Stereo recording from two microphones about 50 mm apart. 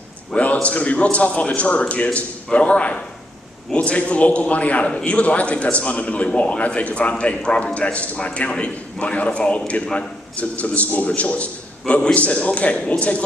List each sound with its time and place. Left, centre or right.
0.3 s a man's voice: left